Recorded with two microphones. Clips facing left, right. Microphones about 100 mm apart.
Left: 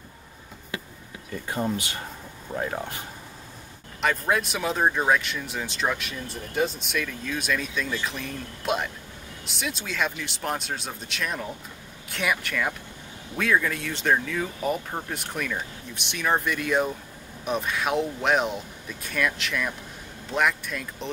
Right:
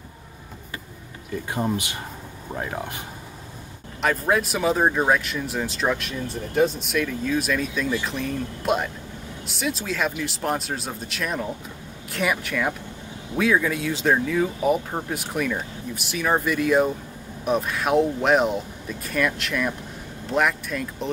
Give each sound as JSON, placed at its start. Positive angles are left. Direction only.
{"t": 1.5, "sound": "speech", "side_deg": -15}
{"t": 4.0, "sound": "speech", "side_deg": 0}